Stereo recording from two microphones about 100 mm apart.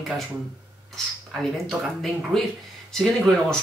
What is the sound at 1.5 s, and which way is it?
Speech, 5° left (ahead or behind).